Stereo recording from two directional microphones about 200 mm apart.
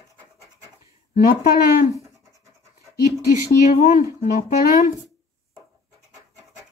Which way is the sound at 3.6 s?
40° left (ahead or behind).